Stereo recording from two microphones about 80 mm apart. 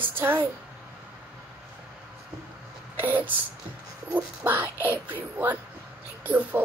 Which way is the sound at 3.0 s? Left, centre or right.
Right.